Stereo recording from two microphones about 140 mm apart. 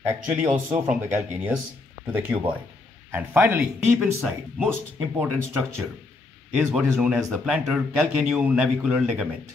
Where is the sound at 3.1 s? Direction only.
15° right (ahead or behind).